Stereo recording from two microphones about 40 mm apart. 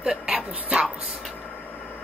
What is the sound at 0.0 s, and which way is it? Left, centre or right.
Dog, centre.